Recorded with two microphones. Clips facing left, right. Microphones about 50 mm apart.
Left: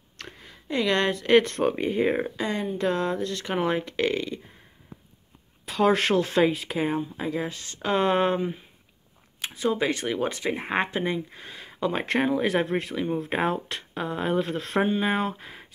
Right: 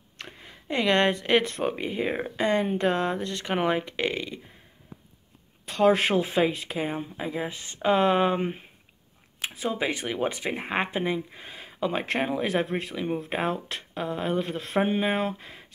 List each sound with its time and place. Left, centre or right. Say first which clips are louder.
0.2 s a sound: even; right
1.3 s speech: left 4 dB; centre
2.3 s speech: right 4 dB; right; by 4.4 s centre
5.7 s speech: even; centre
6.4 s speech: left 3 dB; centre
7.2 s speech: left 2 dB; centre
7.9 s speech: right 1 dB; centre
9.4 s speech: left 3 dB; centre
11.7 s speech: left 2 dB; centre